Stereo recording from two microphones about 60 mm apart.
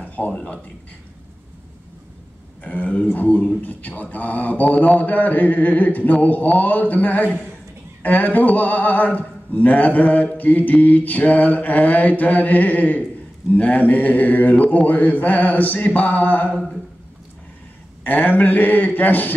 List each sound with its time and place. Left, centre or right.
0.0 s a sound: left
2.6 s speech: left
18.0 s speech: left